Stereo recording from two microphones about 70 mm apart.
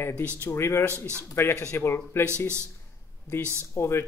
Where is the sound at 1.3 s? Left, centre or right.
Left.